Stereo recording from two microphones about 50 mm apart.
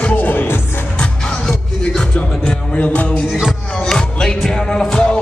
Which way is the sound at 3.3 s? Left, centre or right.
Centre.